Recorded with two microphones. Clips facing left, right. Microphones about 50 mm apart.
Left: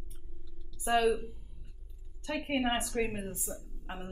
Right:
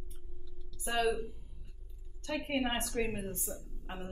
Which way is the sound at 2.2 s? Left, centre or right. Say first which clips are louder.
Left 2 dB; centre.